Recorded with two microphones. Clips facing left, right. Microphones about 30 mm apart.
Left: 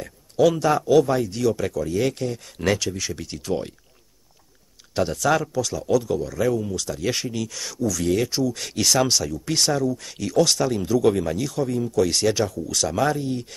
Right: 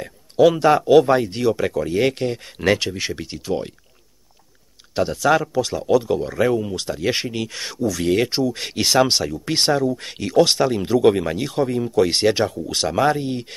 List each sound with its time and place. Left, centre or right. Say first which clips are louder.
0.6 s speech: right 4 dB; right
3.3 s speech: right 2 dB; centre
4.9 s speech: right 3 dB; centre
5.6 s speech: right 4 dB; right